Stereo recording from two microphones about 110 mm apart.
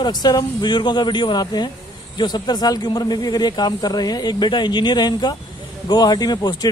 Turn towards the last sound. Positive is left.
turn(degrees=35)  # may be behind; listen again after turning